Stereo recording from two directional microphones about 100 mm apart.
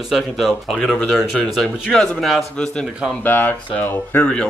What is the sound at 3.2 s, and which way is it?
Speech, 20° left (ahead or behind).